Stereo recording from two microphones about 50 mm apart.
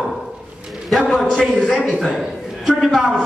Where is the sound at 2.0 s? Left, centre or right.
Centre.